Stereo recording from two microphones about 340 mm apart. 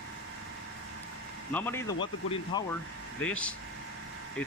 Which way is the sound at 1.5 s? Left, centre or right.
Centre.